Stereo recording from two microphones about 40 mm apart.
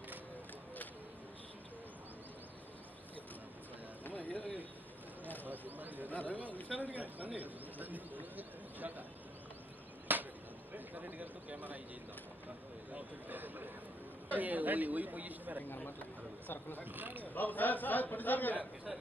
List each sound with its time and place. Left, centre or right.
4.0 s run: left
5.4 s a sound: right
6.4 s a sound: left
6.8 s speech: right
10.1 s a sound: right
10.7 s a man's voice: right
13.3 s speech: right
16.4 s a man's voice: left
16.8 s speech: right
17.2 s a man's voice: left